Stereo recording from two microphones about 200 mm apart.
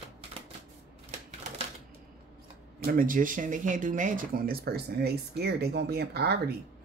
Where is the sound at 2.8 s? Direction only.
45° right (ahead or behind).